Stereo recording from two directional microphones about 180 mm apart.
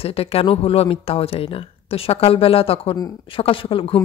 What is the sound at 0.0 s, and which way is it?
A woman's voice, 35° left (ahead or behind).